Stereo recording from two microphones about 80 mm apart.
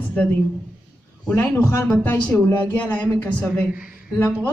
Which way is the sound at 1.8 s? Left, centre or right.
Left.